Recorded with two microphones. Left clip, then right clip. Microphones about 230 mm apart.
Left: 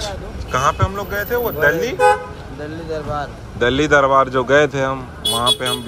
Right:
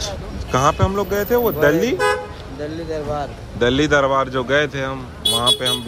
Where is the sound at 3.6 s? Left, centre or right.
Centre.